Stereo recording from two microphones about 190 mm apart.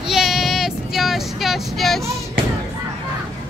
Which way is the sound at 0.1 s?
Centre (ahead or behind).